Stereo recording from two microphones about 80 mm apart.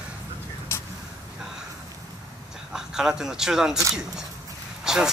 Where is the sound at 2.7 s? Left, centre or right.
Centre.